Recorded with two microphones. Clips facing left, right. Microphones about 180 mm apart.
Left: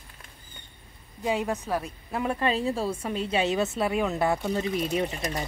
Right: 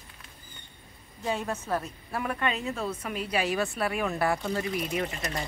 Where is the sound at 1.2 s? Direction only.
15° left (ahead or behind).